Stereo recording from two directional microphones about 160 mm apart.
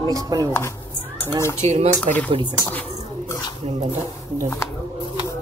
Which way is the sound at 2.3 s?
30° right (ahead or behind).